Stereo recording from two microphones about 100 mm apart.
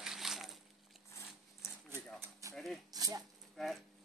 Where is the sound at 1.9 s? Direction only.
30° right (ahead or behind).